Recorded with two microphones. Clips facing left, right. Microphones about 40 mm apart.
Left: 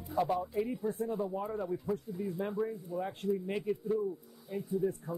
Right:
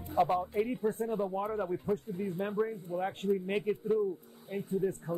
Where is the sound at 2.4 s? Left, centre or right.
Right.